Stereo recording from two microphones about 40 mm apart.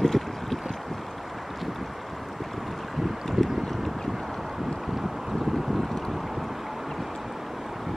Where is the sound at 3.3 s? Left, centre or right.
Centre.